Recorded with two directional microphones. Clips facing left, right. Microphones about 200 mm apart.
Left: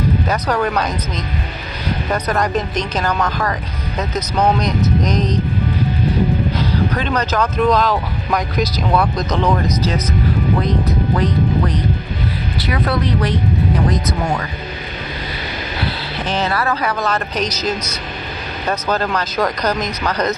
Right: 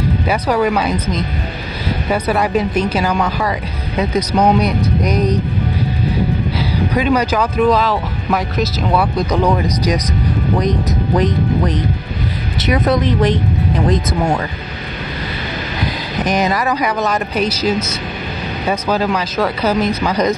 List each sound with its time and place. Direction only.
0.3 s speech: 10° right (ahead or behind)
6.6 s speech: 10° right (ahead or behind)
12.5 s speech: 20° right (ahead or behind)
15.8 s speech: 15° right (ahead or behind)